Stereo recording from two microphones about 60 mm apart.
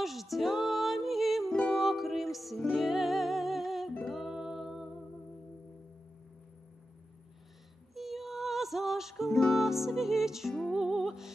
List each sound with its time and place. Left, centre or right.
0.0 s music: centre
7.9 s music: centre